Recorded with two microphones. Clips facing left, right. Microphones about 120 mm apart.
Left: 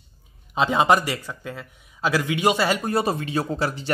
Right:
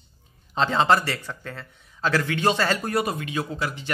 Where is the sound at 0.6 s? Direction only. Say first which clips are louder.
Left 2 dB; 10° left (ahead or behind).